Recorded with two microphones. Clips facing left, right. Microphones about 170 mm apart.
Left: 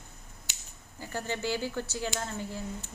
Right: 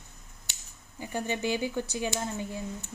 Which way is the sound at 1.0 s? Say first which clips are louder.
Right 3 dB; 15° right (ahead or behind).